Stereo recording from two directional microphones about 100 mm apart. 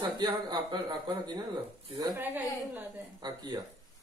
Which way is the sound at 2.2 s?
20° right (ahead or behind).